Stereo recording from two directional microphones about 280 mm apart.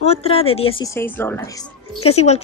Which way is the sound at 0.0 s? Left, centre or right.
Left.